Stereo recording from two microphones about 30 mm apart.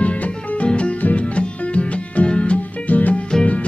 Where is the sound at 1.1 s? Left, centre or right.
Left.